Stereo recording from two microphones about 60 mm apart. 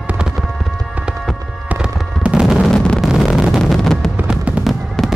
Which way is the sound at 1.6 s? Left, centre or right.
Centre.